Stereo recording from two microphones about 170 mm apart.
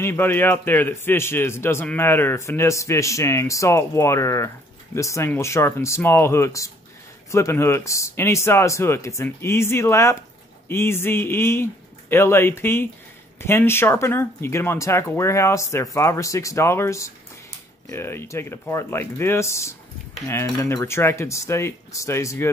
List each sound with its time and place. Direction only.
0.0 s a man's voice: 15° left (ahead or behind)